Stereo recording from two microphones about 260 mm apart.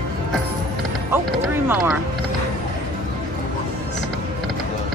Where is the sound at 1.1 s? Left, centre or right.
Centre.